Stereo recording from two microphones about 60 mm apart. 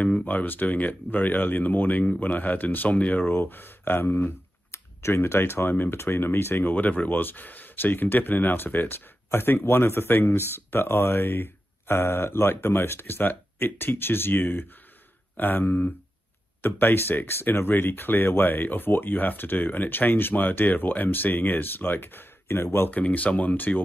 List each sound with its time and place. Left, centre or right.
0.0 s a sound: left
0.4 s speech: left
22.8 s speech: left